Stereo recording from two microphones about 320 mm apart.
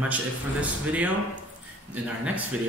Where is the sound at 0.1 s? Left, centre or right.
Centre.